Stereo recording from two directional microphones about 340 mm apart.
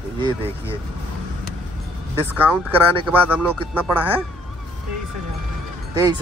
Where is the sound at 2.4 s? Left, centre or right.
Centre.